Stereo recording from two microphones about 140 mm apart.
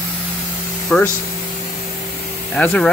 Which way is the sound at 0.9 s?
10° left (ahead or behind).